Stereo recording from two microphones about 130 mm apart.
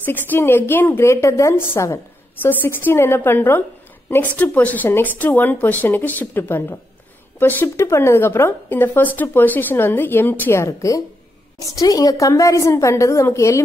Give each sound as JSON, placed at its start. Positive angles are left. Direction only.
{"t": 0.0, "sound": "a woman's voice", "side_deg": 15}